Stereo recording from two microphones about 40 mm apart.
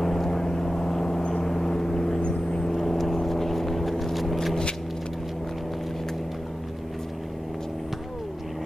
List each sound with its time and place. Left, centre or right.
0.0 s vehicle: centre
2.2 s vehicle: left
2.6 s vehicle: centre